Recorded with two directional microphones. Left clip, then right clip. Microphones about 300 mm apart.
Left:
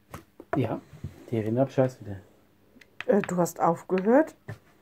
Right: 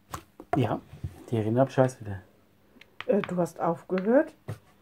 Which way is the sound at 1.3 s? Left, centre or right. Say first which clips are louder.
Right 1 dB; right.